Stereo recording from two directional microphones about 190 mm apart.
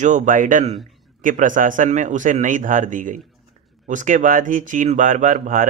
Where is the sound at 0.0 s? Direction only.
40° right (ahead or behind).